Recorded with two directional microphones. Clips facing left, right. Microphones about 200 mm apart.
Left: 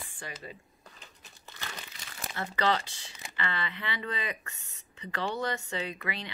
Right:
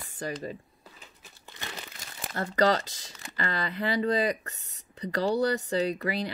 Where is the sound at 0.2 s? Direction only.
40° right (ahead or behind).